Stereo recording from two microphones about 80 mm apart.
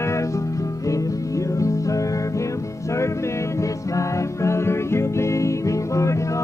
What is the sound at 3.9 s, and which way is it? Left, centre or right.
Music, left.